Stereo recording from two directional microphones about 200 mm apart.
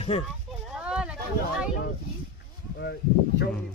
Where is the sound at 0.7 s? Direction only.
5° right (ahead or behind).